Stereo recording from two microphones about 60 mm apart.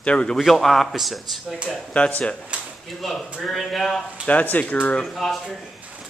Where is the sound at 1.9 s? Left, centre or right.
Centre.